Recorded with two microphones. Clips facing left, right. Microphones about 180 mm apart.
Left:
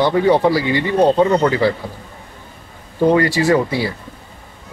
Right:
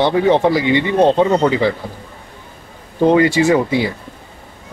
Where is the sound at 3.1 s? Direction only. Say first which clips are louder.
Right 3 dB; 20° right (ahead or behind).